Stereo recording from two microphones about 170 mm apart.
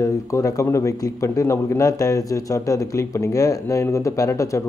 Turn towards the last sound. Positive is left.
turn(degrees=15)  # may be behind; listen again after turning